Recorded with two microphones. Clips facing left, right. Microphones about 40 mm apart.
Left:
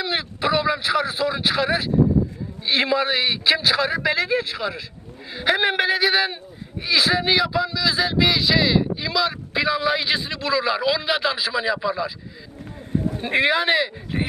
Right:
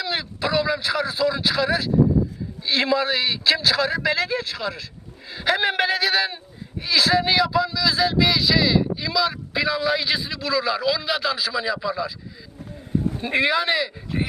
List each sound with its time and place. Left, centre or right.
0.0 s a man's voice: centre
13.2 s speech: centre